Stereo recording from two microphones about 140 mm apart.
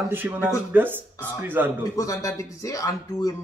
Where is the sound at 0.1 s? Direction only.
15° right (ahead or behind).